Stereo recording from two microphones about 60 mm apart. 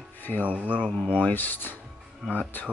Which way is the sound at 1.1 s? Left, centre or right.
Left.